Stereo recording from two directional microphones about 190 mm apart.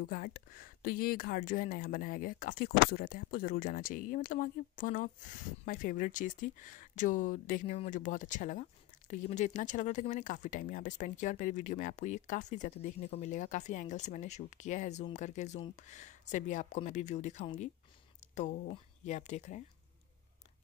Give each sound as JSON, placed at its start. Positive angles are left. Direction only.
{"t": 0.1, "sound": "speech", "side_deg": 50}